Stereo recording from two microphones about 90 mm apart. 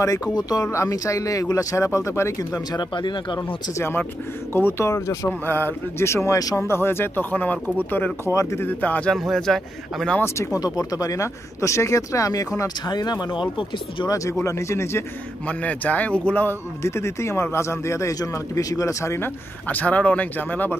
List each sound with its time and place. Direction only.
0.0 s speech: 40° left (ahead or behind)
2.7 s speech: 55° left (ahead or behind)
3.7 s speech: 25° left (ahead or behind)
5.5 s speech: 25° left (ahead or behind)
8.3 s speech: 35° left (ahead or behind)
8.6 s speech: 20° left (ahead or behind)
9.1 s speech: 5° left (ahead or behind)
10.2 s speech: 35° left (ahead or behind); by 14.0 s 70° left (ahead or behind)
14.0 s speech: 40° left (ahead or behind)
15.4 s speech: 15° left (ahead or behind)
16.8 s speech: 30° left (ahead or behind)